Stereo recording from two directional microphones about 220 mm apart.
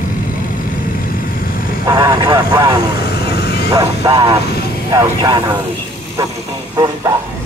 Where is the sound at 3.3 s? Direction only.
50° left (ahead or behind).